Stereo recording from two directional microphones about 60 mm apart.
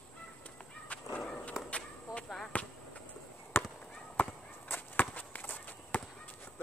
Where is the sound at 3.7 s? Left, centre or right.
Left.